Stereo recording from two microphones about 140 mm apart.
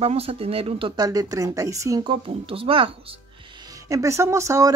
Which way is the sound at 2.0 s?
40° right (ahead or behind).